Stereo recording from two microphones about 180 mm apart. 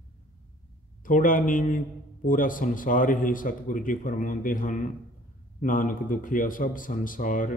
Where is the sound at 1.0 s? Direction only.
50° left (ahead or behind).